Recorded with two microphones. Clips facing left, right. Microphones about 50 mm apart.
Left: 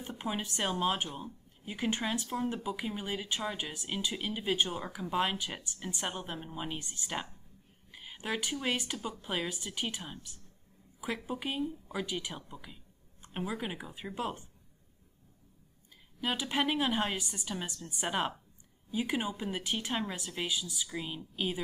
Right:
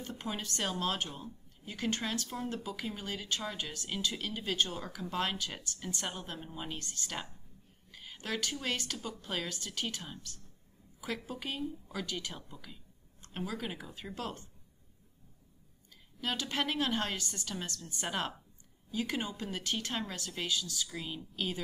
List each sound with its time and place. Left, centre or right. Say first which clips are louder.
0.0 s a woman's voice: left 3 dB; centre
16.2 s speech: left 3 dB; centre